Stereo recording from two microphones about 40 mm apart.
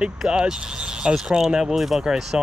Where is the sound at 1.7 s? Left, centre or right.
Centre.